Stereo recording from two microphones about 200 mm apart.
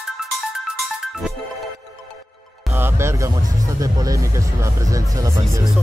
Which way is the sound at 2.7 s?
10° right (ahead or behind).